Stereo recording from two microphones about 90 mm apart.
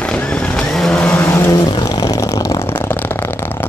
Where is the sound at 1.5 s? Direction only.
50° left (ahead or behind).